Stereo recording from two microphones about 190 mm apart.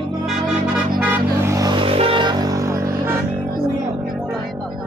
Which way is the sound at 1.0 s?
10° right (ahead or behind).